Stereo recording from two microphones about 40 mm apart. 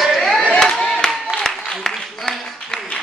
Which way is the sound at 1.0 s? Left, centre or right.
Centre.